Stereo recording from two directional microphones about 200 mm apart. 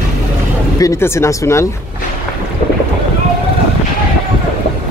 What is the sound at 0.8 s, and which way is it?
Speech, 15° left (ahead or behind).